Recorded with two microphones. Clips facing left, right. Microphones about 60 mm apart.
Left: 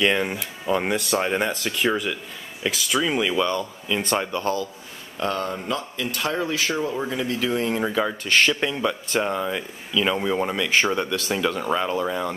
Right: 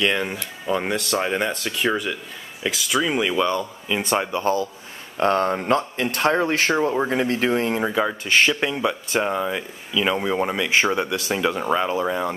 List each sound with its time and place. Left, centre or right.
0.0 s speech: centre
5.1 s speech: right
7.7 s speech: centre